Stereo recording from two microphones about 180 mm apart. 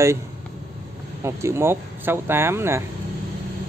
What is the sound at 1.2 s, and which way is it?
Speech, 15° right (ahead or behind).